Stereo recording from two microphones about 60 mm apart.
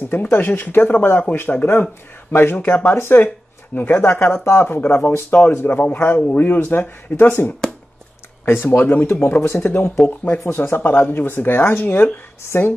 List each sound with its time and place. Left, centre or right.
0.1 s speech: left
8.7 s speech: left
10.0 s speech: left
10.4 s speech: left